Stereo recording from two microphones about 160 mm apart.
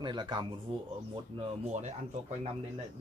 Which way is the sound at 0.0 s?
30° right (ahead or behind).